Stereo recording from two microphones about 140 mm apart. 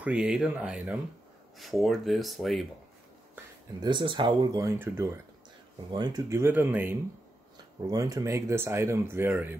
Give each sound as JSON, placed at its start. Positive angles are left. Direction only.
{"t": 0.0, "sound": "speech", "side_deg": -5}
{"t": 3.8, "sound": "speech", "side_deg": -35}
{"t": 7.8, "sound": "speech", "side_deg": -25}